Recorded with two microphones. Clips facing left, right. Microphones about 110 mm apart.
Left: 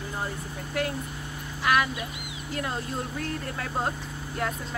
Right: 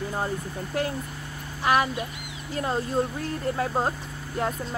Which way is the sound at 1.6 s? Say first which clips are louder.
Right 2 dB; 30° right (ahead or behind).